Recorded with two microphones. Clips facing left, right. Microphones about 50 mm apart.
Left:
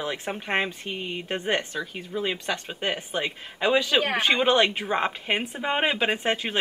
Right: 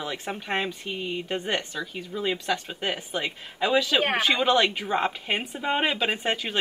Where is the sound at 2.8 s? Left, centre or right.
Centre.